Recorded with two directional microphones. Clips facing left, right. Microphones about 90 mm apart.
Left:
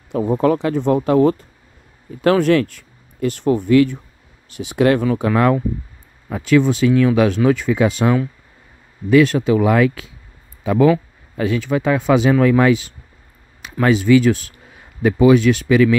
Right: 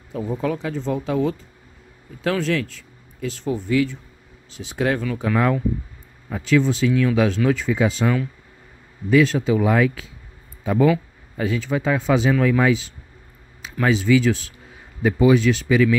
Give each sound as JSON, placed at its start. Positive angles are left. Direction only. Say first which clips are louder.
{"t": 0.1, "sound": "speech", "louder": "left 8 dB", "side_deg": 65}
{"t": 10.6, "sound": "speech", "louder": "left 4 dB", "side_deg": 90}
{"t": 11.3, "sound": "speech", "louder": "left 4 dB", "side_deg": 70}
{"t": 15.0, "sound": "speech", "louder": "left 4 dB", "side_deg": 70}